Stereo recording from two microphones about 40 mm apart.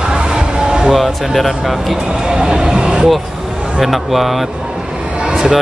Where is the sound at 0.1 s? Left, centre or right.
Right.